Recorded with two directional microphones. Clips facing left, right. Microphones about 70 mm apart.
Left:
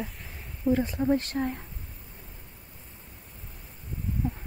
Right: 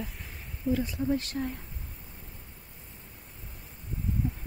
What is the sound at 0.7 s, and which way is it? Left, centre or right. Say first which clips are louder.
Speech: left 4 dB; left.